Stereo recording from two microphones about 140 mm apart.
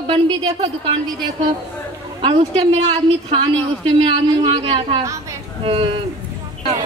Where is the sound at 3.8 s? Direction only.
35° right (ahead or behind).